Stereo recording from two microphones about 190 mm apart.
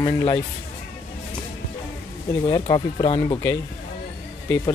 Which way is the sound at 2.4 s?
25° left (ahead or behind).